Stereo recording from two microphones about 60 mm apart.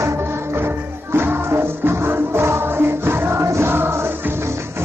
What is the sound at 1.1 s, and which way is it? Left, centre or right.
Music, right.